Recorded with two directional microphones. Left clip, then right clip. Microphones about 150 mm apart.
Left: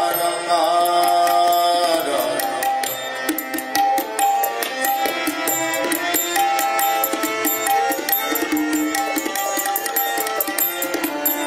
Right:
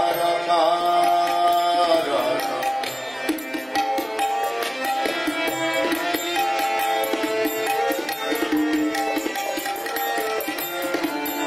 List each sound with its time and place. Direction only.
0.5 s music: 40° left (ahead or behind)
6.5 s music: 40° left (ahead or behind)